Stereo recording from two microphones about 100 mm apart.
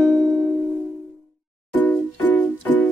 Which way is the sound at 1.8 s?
15° left (ahead or behind).